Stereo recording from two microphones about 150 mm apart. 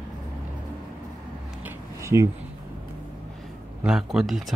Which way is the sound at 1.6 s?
20° right (ahead or behind).